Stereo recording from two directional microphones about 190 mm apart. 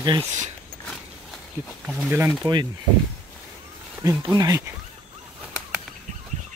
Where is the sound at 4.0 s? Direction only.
15° right (ahead or behind).